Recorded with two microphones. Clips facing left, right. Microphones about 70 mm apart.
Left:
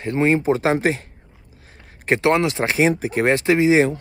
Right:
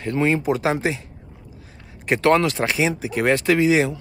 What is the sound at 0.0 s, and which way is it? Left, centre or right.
Speech, left.